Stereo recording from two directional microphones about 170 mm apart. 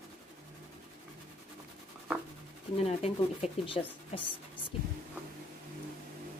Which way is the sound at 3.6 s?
30° left (ahead or behind).